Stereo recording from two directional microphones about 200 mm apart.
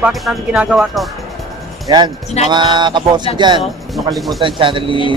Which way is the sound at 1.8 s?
20° right (ahead or behind).